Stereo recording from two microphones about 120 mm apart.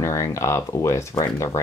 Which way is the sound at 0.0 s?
25° left (ahead or behind).